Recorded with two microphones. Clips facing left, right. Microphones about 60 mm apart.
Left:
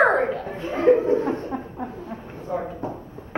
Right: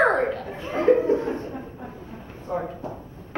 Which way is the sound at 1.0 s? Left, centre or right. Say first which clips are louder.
Left 1 dB; left.